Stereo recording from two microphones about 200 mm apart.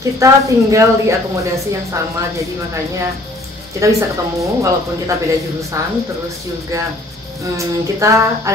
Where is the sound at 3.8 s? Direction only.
15° right (ahead or behind).